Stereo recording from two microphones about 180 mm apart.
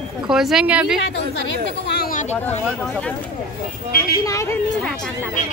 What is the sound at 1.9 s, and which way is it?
Speech, 55° left (ahead or behind).